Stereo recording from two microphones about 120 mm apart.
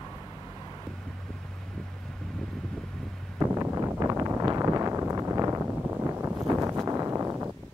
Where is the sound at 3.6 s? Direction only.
20° right (ahead or behind).